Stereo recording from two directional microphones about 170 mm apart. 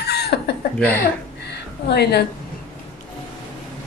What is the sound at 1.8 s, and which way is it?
Speech, 75° left (ahead or behind).